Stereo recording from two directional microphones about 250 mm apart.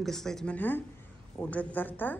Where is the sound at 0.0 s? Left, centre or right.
Centre.